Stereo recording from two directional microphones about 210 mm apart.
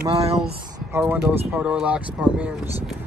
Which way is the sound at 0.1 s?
30° right (ahead or behind).